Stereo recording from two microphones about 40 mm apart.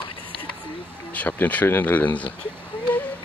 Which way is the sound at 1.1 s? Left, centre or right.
Left.